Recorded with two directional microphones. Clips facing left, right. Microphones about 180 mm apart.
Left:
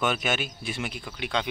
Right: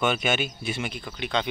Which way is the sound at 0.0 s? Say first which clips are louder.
Right 2 dB; centre (ahead or behind).